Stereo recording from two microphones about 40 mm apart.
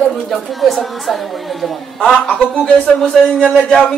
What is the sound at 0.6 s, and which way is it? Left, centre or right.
Speech, centre.